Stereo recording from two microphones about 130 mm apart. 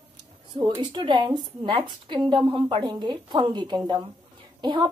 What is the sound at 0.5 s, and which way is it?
A woman's voice, 35° right (ahead or behind).